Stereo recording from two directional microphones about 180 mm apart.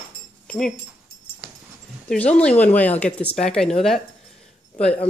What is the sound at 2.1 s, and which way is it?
Speech, 5° left (ahead or behind).